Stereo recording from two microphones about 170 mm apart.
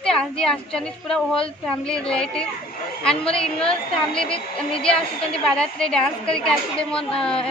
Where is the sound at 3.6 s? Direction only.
35° left (ahead or behind).